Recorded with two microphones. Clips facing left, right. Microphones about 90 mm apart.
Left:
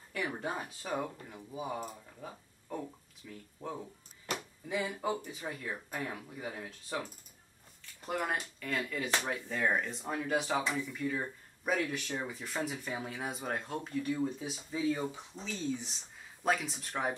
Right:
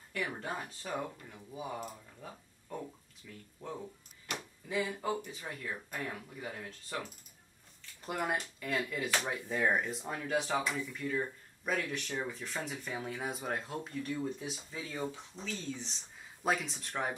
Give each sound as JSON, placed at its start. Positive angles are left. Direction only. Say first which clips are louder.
{"t": 0.1, "sound": "speech", "louder": "left 2 dB", "side_deg": 10}
{"t": 15.4, "sound": "speech", "louder": "left 4 dB", "side_deg": 15}
{"t": 15.9, "sound": "speech", "louder": "even", "side_deg": 0}